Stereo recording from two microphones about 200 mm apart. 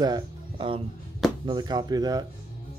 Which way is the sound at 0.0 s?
20° right (ahead or behind).